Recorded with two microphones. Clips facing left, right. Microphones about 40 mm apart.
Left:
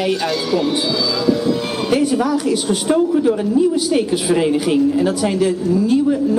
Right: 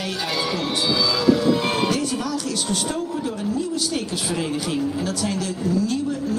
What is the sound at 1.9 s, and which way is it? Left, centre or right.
Speech, centre.